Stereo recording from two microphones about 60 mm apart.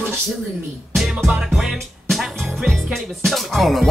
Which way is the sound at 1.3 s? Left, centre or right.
Centre.